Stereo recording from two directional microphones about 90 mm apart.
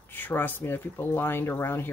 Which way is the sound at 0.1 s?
25° left (ahead or behind).